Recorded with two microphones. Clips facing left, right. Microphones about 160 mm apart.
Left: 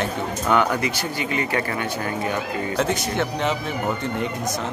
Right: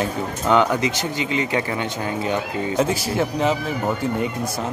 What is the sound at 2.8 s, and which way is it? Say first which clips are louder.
Speech: right 2 dB; 5° right (ahead or behind).